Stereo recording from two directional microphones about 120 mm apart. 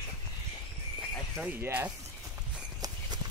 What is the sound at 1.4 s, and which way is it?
Speech, 15° right (ahead or behind).